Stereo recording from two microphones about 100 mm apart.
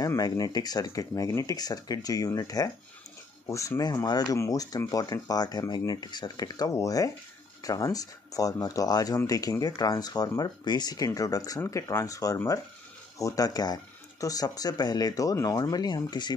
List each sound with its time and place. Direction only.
0.0 s speech: 35° left (ahead or behind)